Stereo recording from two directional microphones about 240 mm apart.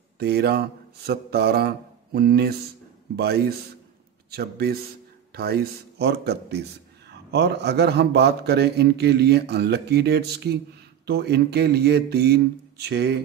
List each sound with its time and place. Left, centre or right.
0.2 s a man's voice: right